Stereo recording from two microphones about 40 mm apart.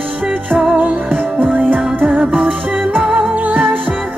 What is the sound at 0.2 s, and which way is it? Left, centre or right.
Music, right.